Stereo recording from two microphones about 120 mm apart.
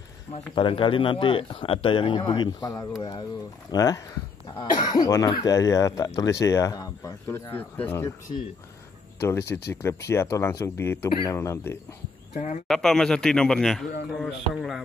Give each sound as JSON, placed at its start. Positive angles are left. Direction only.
{"t": 0.6, "sound": "speech", "side_deg": 45}
{"t": 7.2, "sound": "speech", "side_deg": 15}
{"t": 9.2, "sound": "speech", "side_deg": 20}
{"t": 12.4, "sound": "speech", "side_deg": 90}
{"t": 12.6, "sound": "a man's voice", "side_deg": 5}